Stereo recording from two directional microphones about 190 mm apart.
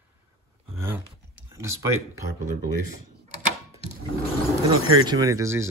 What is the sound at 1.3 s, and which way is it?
Computer keyboard, 15° right (ahead or behind).